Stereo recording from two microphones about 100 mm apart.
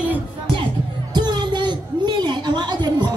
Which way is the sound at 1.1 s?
45° right (ahead or behind).